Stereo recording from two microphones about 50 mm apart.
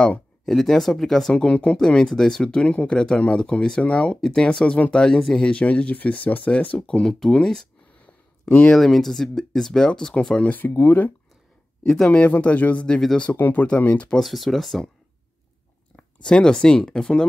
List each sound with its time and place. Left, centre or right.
0.5 s speech: centre
1.3 s speech: left
5.5 s speech: left
6.9 s speech: centre
8.7 s speech: centre
10.8 s speech: left
11.8 s speech: centre
14.2 s speech: centre
16.0 s speech: centre